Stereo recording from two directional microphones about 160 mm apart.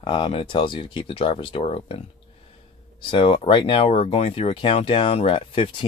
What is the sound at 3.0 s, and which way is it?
Speech, 30° left (ahead or behind).